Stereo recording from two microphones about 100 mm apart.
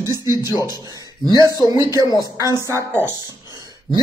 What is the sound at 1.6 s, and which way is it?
Speech, 35° right (ahead or behind).